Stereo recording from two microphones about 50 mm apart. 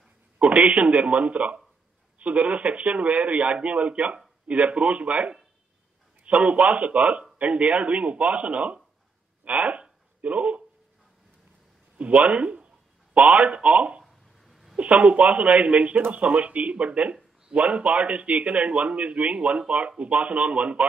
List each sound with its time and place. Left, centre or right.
0.4 s speech: right
6.3 s speech: right
9.4 s a sound: right
12.0 s speech: right
14.0 s a sound: centre
14.8 s speech: right